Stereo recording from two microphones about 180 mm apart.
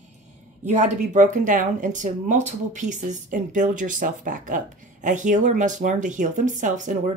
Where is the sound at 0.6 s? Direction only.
40° right (ahead or behind).